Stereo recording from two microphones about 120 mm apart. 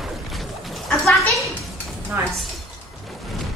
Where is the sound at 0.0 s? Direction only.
Centre (ahead or behind).